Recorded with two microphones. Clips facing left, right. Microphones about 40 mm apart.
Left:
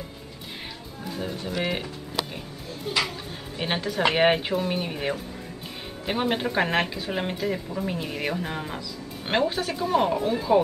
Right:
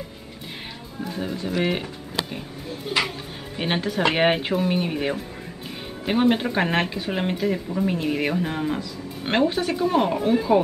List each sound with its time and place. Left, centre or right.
1.0 s music: centre
1.3 s speech: right
3.0 s speech: right
3.5 s speech: centre